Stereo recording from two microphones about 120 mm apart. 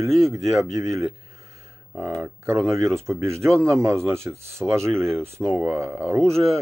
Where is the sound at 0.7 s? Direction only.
25° right (ahead or behind).